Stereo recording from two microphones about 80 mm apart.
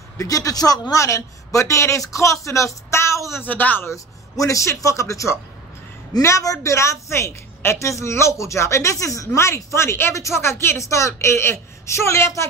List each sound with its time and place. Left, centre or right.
0.2 s a woman's voice: left
3.4 s speech: left
3.9 s a woman's voice: left